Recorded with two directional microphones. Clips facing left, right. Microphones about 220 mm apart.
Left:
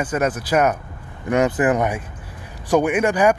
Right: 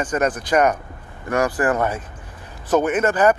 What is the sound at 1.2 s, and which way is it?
A man's voice, 20° left (ahead or behind).